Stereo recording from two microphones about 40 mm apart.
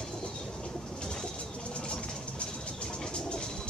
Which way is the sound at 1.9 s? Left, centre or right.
Left.